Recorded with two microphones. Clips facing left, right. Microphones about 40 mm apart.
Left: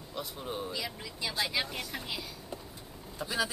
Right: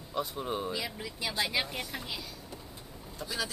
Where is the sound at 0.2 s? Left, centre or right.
Centre.